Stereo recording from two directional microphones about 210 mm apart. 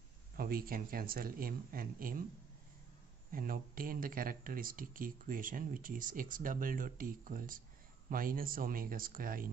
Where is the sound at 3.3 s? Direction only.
40° right (ahead or behind).